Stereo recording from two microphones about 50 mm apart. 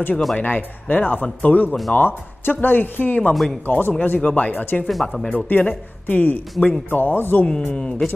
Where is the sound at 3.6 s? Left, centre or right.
Left.